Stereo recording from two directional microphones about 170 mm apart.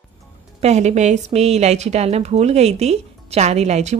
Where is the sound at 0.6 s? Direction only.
40° right (ahead or behind).